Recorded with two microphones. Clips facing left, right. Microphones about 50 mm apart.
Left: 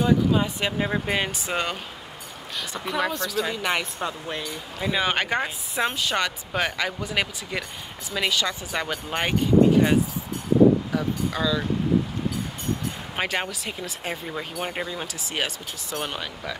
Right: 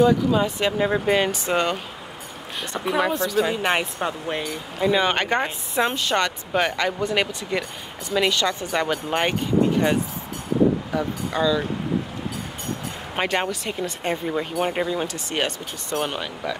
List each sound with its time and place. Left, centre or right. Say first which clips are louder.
0.0 s speech: right 3 dB; centre
3.5 s speech: right 4 dB; right
4.7 s speech: right 4 dB; centre
10.9 s speech: right 1 dB; centre
13.1 s speech: right 5 dB; centre